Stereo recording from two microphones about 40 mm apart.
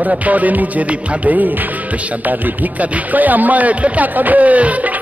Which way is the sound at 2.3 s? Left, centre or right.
Right.